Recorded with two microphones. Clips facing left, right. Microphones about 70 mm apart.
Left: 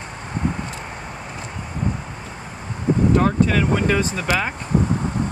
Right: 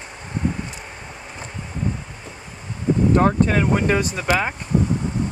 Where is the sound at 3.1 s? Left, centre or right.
Right.